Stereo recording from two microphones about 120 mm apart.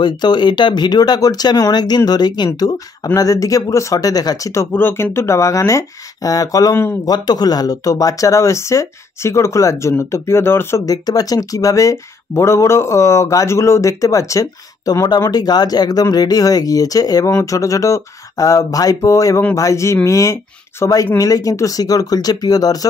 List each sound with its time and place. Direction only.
0.0 s speech: 35° left (ahead or behind); by 7.0 s 20° left (ahead or behind)
7.1 s speech: 35° left (ahead or behind)
10.9 s speech: 30° left (ahead or behind)